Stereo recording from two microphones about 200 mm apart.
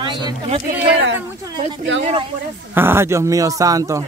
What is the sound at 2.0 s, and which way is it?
Speech, 30° right (ahead or behind).